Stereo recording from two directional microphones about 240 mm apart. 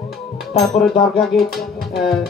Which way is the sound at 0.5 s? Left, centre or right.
Centre.